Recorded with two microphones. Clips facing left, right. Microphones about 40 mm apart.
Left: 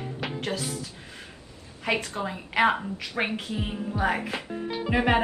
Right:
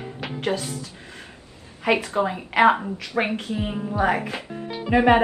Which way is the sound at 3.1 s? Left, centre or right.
Centre.